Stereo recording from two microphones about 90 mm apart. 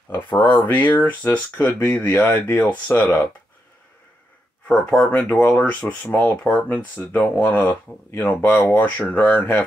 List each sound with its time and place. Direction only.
0.1 s speech: 20° left (ahead or behind)
4.6 s speech: 15° left (ahead or behind)